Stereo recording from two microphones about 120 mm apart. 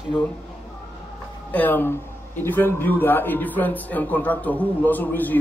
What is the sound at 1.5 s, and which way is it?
A man's voice, 15° left (ahead or behind).